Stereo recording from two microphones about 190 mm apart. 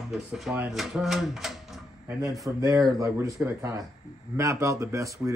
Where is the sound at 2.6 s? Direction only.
15° right (ahead or behind).